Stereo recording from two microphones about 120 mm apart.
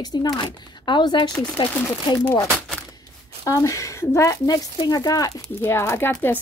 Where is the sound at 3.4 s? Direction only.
25° left (ahead or behind).